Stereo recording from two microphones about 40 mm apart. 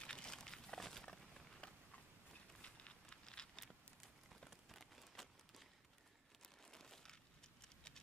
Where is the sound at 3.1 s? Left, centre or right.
Centre.